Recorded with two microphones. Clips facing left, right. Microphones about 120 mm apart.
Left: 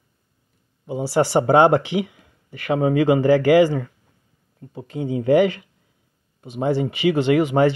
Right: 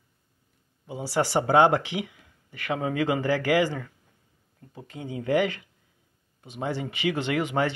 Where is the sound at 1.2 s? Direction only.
35° left (ahead or behind).